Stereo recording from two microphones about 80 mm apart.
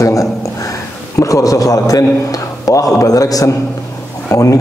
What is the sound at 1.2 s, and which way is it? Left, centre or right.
Speech, left.